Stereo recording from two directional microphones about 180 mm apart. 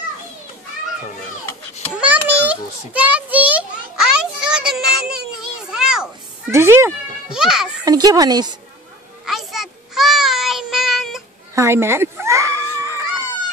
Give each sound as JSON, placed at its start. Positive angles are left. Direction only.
{"t": 2.0, "sound": "a sound", "side_deg": -10}
{"t": 6.5, "sound": "a child's voice", "side_deg": -15}
{"t": 7.3, "sound": "a child's voice", "side_deg": -5}
{"t": 7.8, "sound": "speech", "side_deg": -20}
{"t": 9.2, "sound": "child singing", "side_deg": 0}
{"t": 11.5, "sound": "a sound", "side_deg": -15}